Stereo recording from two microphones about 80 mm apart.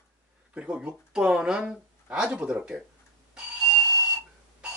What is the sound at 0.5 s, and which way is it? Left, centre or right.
Speech, centre.